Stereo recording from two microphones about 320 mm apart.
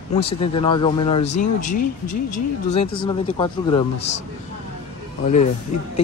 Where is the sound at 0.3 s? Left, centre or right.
Centre.